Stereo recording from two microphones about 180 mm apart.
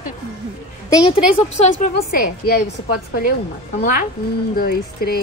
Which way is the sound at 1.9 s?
60° left (ahead or behind).